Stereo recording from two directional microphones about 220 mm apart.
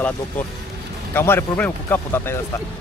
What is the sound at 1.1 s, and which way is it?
Speech, 10° left (ahead or behind).